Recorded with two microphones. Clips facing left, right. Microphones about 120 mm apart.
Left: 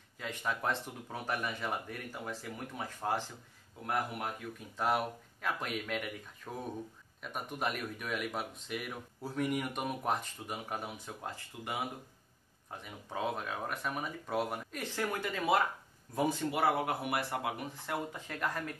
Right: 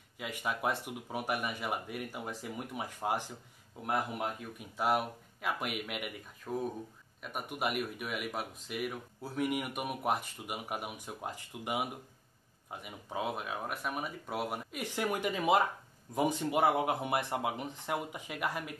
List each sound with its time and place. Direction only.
0.2 s speech: 10° right (ahead or behind)
4.7 s speech: 5° right (ahead or behind)